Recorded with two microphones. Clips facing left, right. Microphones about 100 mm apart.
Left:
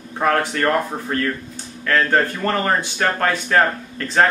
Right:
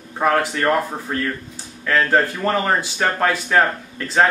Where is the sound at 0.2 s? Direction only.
5° right (ahead or behind).